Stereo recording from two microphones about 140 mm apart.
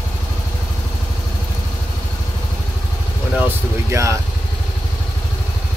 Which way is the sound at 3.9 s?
20° right (ahead or behind).